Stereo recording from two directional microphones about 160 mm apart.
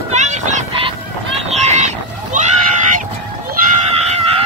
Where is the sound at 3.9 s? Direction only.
40° right (ahead or behind).